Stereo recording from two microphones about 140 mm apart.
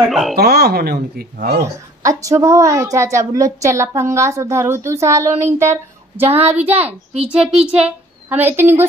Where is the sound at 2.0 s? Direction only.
20° right (ahead or behind).